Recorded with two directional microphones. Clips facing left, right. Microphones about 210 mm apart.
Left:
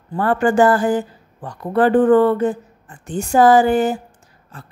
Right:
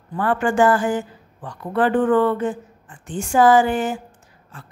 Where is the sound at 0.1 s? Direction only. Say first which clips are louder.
Left 4 dB; 40° left (ahead or behind).